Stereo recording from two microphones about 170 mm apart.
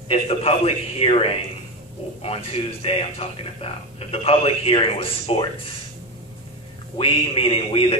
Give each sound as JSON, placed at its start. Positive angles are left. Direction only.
{"t": 0.1, "sound": "speech", "side_deg": 35}
{"t": 7.0, "sound": "speech", "side_deg": 35}